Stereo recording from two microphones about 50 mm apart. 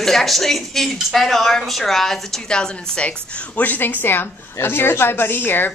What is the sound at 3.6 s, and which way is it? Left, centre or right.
Speech, left.